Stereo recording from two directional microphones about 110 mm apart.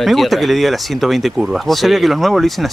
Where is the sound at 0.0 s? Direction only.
Centre (ahead or behind).